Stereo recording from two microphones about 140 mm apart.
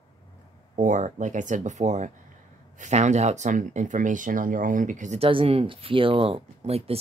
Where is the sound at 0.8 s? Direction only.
65° right (ahead or behind).